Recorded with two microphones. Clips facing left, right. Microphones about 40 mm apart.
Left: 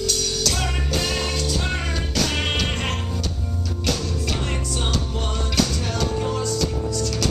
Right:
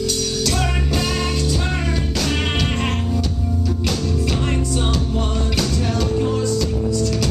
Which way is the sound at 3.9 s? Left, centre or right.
Centre.